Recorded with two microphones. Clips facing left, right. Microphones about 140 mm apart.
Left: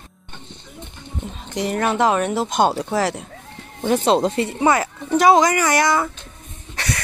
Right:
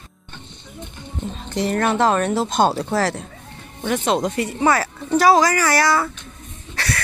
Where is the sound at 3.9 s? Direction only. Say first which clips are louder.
Left 3 dB; 30° left (ahead or behind).